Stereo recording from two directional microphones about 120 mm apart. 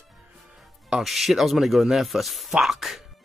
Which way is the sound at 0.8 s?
5° right (ahead or behind).